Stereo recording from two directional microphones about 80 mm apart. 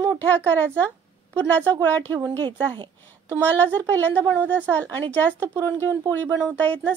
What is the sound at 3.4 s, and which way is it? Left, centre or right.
A woman's voice, centre.